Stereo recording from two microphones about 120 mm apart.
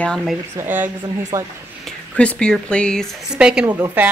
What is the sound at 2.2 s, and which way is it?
Speech, 10° left (ahead or behind).